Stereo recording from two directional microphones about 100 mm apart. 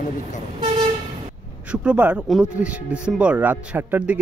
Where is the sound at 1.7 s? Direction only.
10° right (ahead or behind).